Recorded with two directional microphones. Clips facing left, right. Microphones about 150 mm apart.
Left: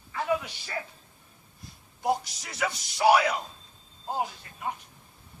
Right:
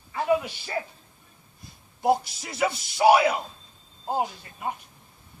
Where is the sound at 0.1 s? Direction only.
25° right (ahead or behind).